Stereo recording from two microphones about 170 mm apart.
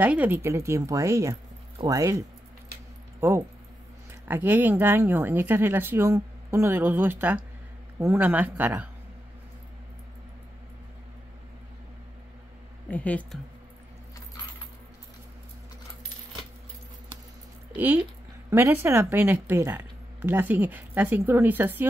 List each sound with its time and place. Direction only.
0.0 s speech: 10° right (ahead or behind)
12.9 s speech: 10° left (ahead or behind)
17.7 s speech: 10° right (ahead or behind)